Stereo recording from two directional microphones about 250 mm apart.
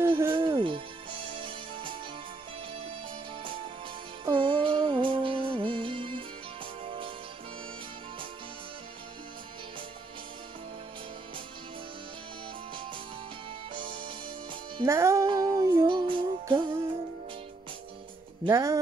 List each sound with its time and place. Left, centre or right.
0.2 s music: centre
4.3 s music: centre
13.7 s music: centre
18.4 s speech: centre